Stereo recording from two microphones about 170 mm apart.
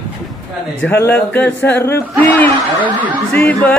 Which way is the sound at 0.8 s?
10° left (ahead or behind).